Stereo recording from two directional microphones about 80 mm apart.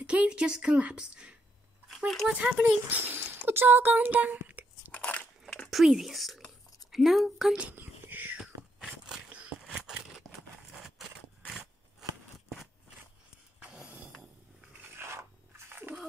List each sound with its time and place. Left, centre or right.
0.0 s speech: centre
1.9 s speech: centre
2.3 s speech: centre
4.9 s biting: centre
5.7 s speech: centre
7.6 s whispering: right
8.4 s biting: centre
10.7 s a sound: centre
13.6 s a sound: centre
14.8 s a sound: right